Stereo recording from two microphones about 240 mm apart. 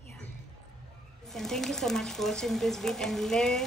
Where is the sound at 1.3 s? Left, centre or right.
Centre.